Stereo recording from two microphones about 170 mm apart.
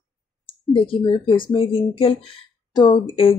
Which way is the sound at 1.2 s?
30° left (ahead or behind).